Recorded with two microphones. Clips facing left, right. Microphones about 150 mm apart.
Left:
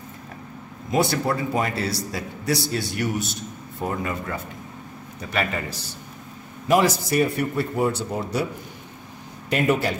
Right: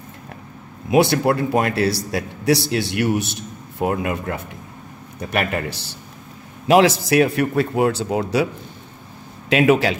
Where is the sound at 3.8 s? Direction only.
65° right (ahead or behind); by 6.0 s 80° right.